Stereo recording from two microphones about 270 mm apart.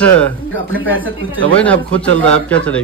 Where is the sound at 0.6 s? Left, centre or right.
Right.